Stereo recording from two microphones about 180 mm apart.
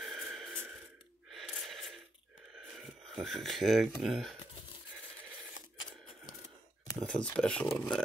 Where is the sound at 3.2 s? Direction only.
Centre (ahead or behind).